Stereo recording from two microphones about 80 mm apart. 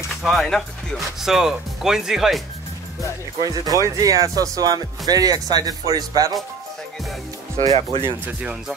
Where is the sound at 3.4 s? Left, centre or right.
Right.